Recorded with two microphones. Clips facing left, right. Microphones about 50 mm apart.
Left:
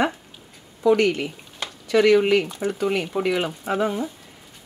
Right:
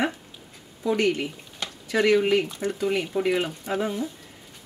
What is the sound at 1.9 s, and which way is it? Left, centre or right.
Speech, left.